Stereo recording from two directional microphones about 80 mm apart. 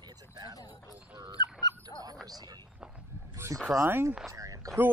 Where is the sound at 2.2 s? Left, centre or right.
Right.